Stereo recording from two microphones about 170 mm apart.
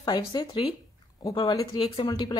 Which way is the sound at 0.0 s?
25° left (ahead or behind).